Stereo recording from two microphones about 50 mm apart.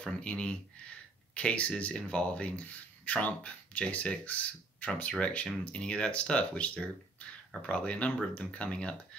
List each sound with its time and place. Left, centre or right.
0.0 s speech: left